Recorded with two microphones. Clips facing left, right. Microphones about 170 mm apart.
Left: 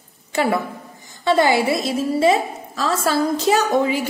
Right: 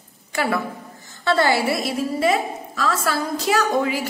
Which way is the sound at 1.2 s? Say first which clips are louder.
Left 3 dB; 15° left (ahead or behind).